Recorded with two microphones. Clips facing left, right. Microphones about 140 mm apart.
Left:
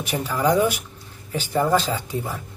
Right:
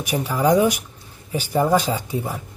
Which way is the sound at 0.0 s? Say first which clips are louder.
Right 2 dB; 15° right (ahead or behind).